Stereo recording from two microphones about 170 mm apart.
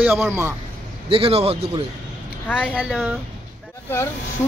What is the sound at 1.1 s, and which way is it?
Speech, 35° right (ahead or behind).